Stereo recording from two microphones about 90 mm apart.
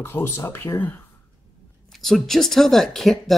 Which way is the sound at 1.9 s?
Centre (ahead or behind).